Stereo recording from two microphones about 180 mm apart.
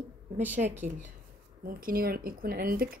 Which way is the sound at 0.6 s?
45° right (ahead or behind).